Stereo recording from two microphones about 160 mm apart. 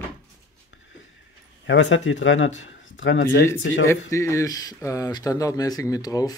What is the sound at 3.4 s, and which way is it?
Speech, 20° left (ahead or behind).